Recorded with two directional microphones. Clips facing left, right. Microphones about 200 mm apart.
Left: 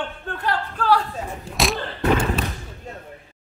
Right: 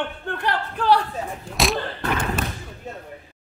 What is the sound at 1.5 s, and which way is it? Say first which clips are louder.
Speech: right 1 dB; centre (ahead or behind).